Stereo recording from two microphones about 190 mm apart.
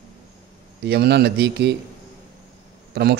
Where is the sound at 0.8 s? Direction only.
60° right (ahead or behind).